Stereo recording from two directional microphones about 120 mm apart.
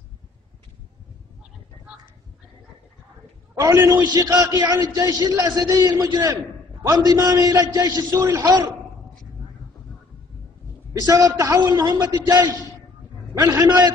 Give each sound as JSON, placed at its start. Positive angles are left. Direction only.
{"t": 3.5, "sound": "a man's voice", "side_deg": -20}
{"t": 10.9, "sound": "a man's voice", "side_deg": -30}